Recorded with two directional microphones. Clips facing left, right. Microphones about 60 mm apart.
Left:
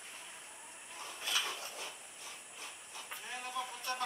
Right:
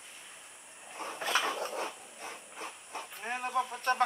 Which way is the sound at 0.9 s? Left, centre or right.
Right.